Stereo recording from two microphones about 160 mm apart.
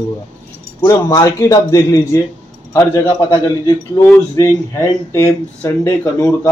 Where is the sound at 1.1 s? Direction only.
20° left (ahead or behind).